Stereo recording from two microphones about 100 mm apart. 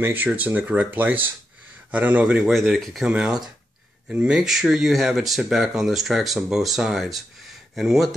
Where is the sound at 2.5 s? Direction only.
Centre (ahead or behind).